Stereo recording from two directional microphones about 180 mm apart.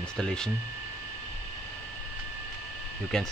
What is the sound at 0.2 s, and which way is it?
Speech, 5° left (ahead or behind).